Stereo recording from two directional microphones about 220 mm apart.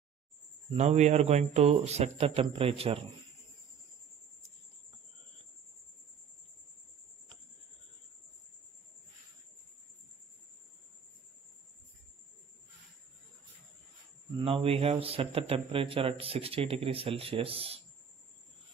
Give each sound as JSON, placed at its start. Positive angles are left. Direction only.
{"t": 0.7, "sound": "a man's voice", "side_deg": -30}
{"t": 14.4, "sound": "a man's voice", "side_deg": -25}